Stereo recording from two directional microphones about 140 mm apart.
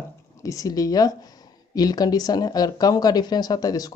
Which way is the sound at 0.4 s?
25° left (ahead or behind).